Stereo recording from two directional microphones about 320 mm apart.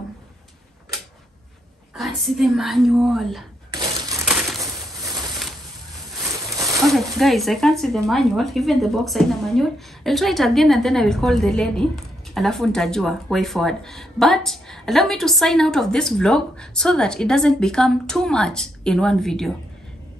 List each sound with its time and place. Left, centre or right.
2.0 s speech: centre
3.7 s crushing: centre
6.3 s a sound: centre
6.8 s speech: centre